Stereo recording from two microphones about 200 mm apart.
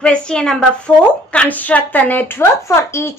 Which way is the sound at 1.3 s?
5° left (ahead or behind).